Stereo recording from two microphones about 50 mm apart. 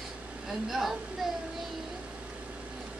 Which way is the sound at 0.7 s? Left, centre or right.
Centre.